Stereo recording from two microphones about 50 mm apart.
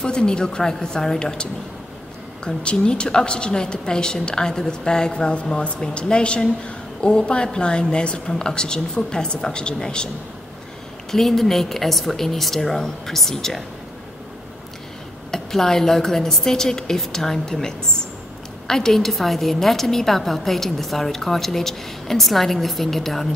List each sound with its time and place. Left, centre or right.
0.0 s a woman's voice: centre
11.1 s a woman's voice: centre
15.3 s a woman's voice: centre